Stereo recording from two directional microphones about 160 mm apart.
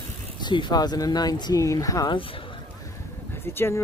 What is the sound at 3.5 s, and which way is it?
Speech, 15° left (ahead or behind).